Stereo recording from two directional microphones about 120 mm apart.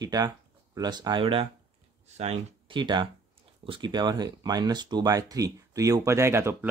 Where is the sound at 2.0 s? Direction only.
65° right (ahead or behind).